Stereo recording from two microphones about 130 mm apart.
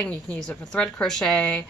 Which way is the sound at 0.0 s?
5° left (ahead or behind).